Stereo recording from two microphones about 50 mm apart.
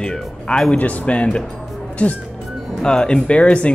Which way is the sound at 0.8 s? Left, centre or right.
Left.